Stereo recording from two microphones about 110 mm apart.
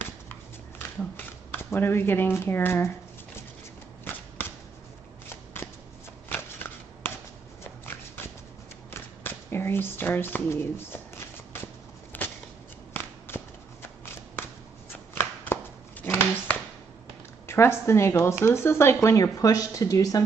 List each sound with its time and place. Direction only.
1.1 s speech: 20° left (ahead or behind)
5.3 s shuffling cards: 20° left (ahead or behind)
7.6 s a sound: 20° left (ahead or behind)
13.3 s shuffling cards: 20° left (ahead or behind)
15.1 s a sound: 20° left (ahead or behind)
17.5 s speech: 25° left (ahead or behind)